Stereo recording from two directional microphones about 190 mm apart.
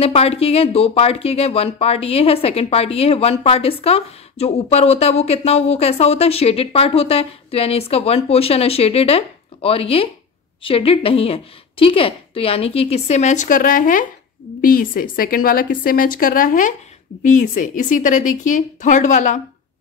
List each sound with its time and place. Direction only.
0.0 s a woman's voice: 30° left (ahead or behind)